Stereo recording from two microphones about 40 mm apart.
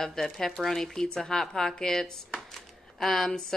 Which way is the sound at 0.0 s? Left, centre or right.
Centre.